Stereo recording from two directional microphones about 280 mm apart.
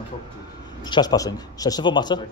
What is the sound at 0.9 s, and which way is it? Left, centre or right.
Speech, centre.